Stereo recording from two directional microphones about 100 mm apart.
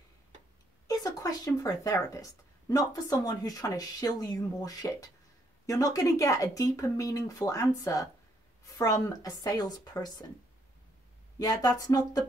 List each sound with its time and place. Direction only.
0.8 s speech: 35° left (ahead or behind)
11.3 s speech: 40° left (ahead or behind)